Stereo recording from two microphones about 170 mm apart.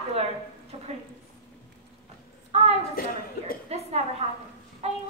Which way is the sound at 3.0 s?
60° left (ahead or behind).